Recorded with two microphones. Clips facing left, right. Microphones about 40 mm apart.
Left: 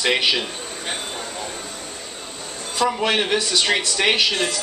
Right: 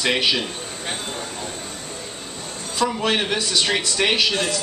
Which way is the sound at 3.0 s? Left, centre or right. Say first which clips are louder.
Left 1 dB; left.